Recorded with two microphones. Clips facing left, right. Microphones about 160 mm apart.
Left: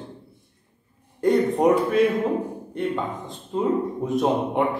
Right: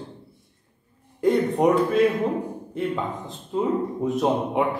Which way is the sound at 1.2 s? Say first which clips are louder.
Left 1 dB; centre (ahead or behind).